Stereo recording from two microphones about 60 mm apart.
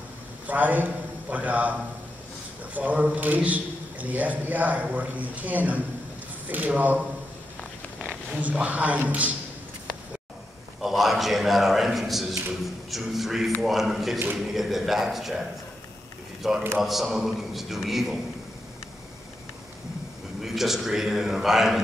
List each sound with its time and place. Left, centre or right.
0.5 s a man's voice: right
8.4 s a man's voice: right
10.8 s a man's voice: centre
16.4 s a man's voice: centre
20.4 s a man's voice: centre